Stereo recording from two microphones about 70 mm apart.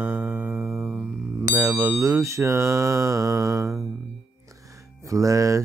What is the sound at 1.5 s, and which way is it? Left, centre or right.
Music, right.